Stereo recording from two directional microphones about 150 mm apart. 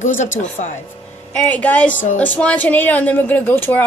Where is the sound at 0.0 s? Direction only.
55° left (ahead or behind).